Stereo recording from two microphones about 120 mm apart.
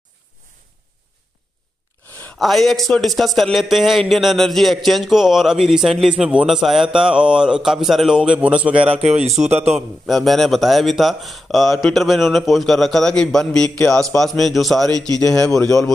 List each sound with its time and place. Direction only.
2.3 s a man's voice: centre (ahead or behind)
8.8 s a man's voice: 60° right (ahead or behind)
9.8 s a man's voice: centre (ahead or behind)
14.9 s speech: 35° right (ahead or behind)